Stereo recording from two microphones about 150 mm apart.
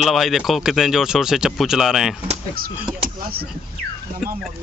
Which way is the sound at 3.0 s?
80° right.